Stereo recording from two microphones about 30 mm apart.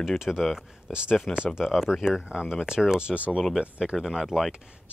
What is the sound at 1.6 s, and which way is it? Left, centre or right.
Speech, centre.